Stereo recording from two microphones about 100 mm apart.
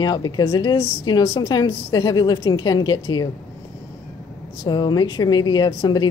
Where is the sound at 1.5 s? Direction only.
45° left (ahead or behind).